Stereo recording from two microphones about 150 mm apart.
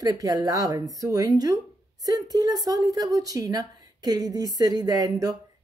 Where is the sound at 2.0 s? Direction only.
25° right (ahead or behind).